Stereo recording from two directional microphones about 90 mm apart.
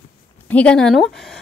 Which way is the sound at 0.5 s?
10° left (ahead or behind).